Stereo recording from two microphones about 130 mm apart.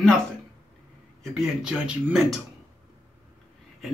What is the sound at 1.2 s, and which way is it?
Speech, 5° right (ahead or behind).